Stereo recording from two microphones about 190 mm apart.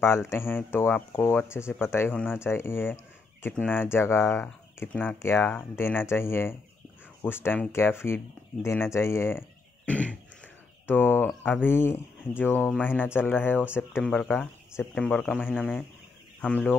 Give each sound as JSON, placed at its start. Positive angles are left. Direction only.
{"t": 0.0, "sound": "speech", "side_deg": 15}
{"t": 9.8, "sound": "cough", "side_deg": 5}
{"t": 10.9, "sound": "speech", "side_deg": 10}